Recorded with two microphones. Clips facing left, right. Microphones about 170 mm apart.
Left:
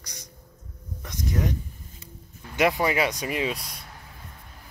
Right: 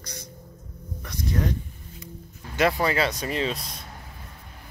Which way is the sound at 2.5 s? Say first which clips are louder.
Even; 15° left (ahead or behind).